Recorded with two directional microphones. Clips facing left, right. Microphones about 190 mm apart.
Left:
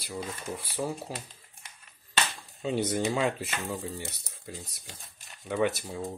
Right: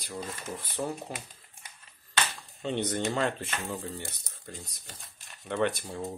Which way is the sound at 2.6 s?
5° left (ahead or behind).